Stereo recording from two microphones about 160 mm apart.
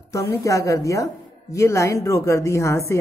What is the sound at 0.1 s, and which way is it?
A woman's voice, 20° left (ahead or behind).